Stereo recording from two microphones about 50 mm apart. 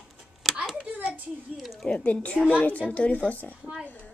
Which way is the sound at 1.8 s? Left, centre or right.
Centre.